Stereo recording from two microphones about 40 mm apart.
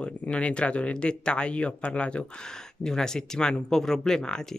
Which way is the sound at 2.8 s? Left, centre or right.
Centre.